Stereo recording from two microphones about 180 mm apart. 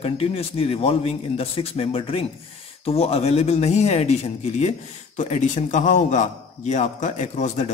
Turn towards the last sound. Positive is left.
turn(degrees=40)  # may be behind; listen again after turning